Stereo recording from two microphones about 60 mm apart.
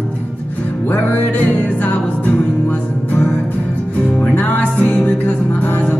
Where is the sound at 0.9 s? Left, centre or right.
Left.